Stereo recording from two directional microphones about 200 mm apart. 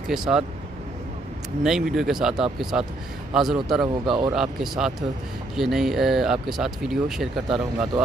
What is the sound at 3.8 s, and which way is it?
Speech, 20° right (ahead or behind).